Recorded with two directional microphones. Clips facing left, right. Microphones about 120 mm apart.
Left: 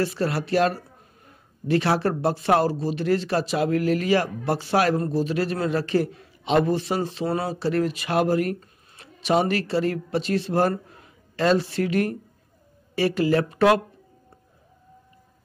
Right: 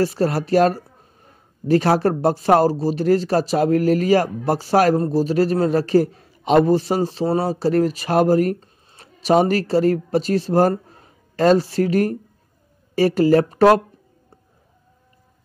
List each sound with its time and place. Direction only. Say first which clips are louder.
0.0 s a man's voice: right 5 dB; 40° right (ahead or behind)